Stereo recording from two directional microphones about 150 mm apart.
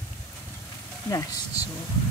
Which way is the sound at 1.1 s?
25° left (ahead or behind).